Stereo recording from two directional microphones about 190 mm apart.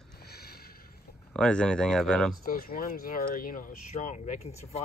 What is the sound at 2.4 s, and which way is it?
Speech, 50° left (ahead or behind).